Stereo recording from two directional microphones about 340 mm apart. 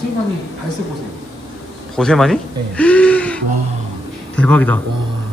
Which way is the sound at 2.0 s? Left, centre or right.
Centre.